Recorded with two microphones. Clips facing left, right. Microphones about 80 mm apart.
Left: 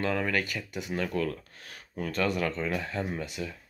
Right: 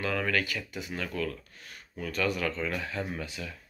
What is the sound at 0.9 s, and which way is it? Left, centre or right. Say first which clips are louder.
Speech: left 4 dB; left.